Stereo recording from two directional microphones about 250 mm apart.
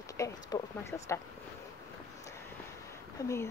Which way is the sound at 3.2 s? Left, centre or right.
Centre.